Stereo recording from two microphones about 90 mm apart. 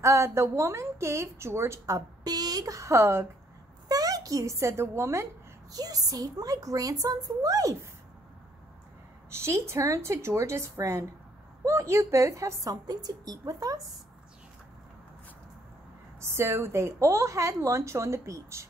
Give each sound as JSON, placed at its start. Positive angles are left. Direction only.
{"t": 0.0, "sound": "a woman's voice", "side_deg": -30}
{"t": 3.9, "sound": "a child's voice", "side_deg": -40}
{"t": 5.7, "sound": "a woman's voice", "side_deg": -45}
{"t": 9.3, "sound": "a woman's voice", "side_deg": -30}
{"t": 16.2, "sound": "a woman's voice", "side_deg": -30}